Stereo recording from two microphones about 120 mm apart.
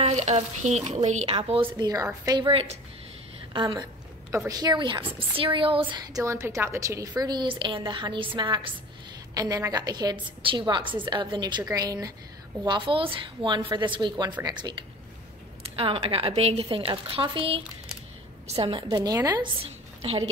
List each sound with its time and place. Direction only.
0.0 s speech: 70° right (ahead or behind)
1.3 s speech: 50° right (ahead or behind)
4.5 s a woman's voice: 35° right (ahead or behind)
6.2 s a woman's voice: 20° right (ahead or behind); by 8.7 s 45° right (ahead or behind)
9.3 s a woman's voice: 30° right (ahead or behind)
15.7 s a woman's voice: 50° right (ahead or behind); by 19.4 s 30° right (ahead or behind)
19.4 s a woman's voice: 50° right (ahead or behind)